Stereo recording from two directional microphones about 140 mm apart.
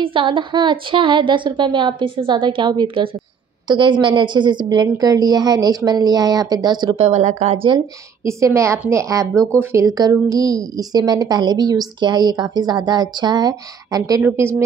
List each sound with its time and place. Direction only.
0.0 s a woman's voice: 35° right (ahead or behind)
7.1 s a woman's voice: 55° right (ahead or behind)
7.5 s a woman's voice: 40° right (ahead or behind)
8.3 s a woman's voice: 20° right (ahead or behind)